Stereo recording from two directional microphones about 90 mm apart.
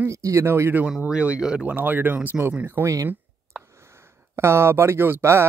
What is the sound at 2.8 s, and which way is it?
Speech, 35° right (ahead or behind).